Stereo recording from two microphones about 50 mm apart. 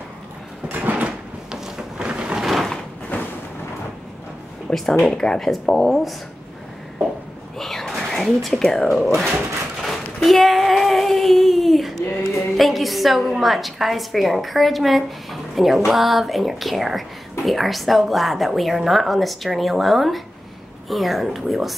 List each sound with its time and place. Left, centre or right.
0.7 s sliding door: right
1.0 s a sound: centre
2.3 s a sound: centre
4.9 s speech: centre
5.5 s a woman's voice: centre
7.5 s a sound: centre
8.1 s a woman's voice: centre
9.8 s child singing: centre
15.9 s a woman's voice: centre